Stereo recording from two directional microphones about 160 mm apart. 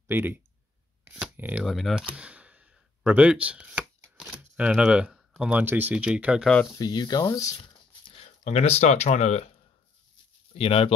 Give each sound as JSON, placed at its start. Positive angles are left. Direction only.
{"t": 0.1, "sound": "speech", "side_deg": -10}
{"t": 2.1, "sound": "a sound", "side_deg": -5}
{"t": 5.4, "sound": "speech", "side_deg": -10}
{"t": 6.8, "sound": "speech", "side_deg": 25}
{"t": 8.0, "sound": "speech", "side_deg": 40}
{"t": 10.5, "sound": "speech", "side_deg": 35}